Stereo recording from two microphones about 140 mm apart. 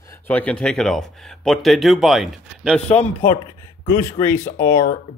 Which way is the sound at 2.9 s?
10° left (ahead or behind).